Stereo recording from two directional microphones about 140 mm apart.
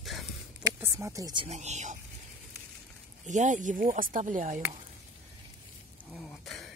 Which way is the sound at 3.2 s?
60° right (ahead or behind).